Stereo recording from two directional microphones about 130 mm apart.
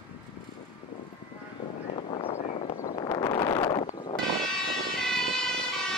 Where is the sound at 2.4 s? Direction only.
70° left (ahead or behind).